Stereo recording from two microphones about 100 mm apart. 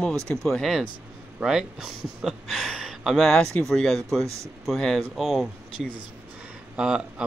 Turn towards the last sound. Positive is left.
turn(degrees=-10)  # may be behind; listen again after turning